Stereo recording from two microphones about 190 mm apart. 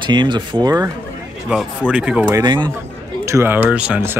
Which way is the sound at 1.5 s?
5° right (ahead or behind).